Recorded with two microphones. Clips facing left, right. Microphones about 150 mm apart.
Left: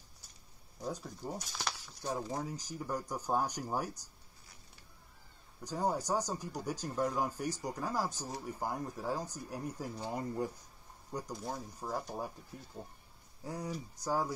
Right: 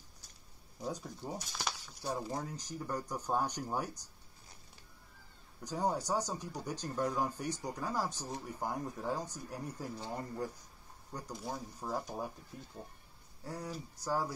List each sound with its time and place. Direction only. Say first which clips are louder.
0.7 s speech: even; centre (ahead or behind)
2.3 s speech: left 1 dB; 10° left (ahead or behind)
5.6 s speech: even; centre (ahead or behind)
11.4 s speech: even; centre (ahead or behind)
13.4 s speech: left 2 dB; 15° left (ahead or behind)